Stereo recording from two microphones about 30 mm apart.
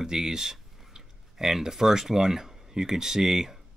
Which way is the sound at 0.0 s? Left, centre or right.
Right.